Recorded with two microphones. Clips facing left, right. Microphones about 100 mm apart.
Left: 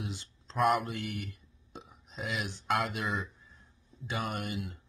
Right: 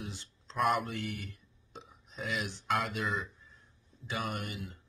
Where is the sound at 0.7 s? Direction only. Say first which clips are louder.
Left 2 dB; 20° left (ahead or behind).